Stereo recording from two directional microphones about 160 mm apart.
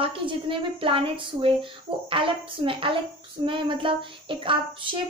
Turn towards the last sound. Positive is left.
turn(degrees=-30)  # may be behind; listen again after turning